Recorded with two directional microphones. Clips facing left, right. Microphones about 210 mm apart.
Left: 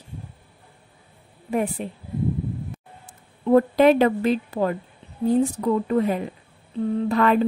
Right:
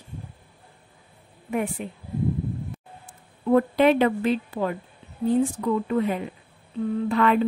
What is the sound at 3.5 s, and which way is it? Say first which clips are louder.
Speech: left 3 dB; 40° left (ahead or behind).